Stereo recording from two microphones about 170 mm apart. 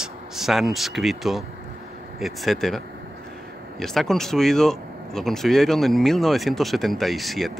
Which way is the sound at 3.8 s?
Centre (ahead or behind).